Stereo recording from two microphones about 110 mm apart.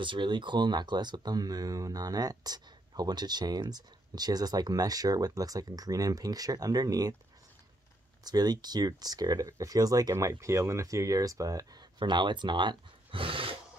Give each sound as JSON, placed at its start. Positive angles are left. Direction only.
{"t": 0.0, "sound": "speech", "side_deg": -45}
{"t": 8.2, "sound": "speech", "side_deg": -40}
{"t": 12.0, "sound": "speech", "side_deg": -45}